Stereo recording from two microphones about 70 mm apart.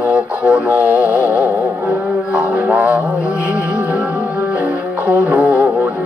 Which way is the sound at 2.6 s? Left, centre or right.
Right.